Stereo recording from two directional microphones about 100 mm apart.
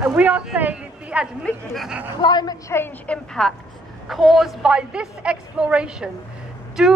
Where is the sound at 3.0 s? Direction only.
10° left (ahead or behind).